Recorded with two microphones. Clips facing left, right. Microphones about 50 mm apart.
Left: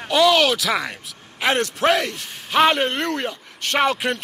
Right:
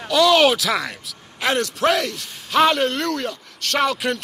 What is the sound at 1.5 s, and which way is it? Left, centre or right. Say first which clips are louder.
Speech: even; left.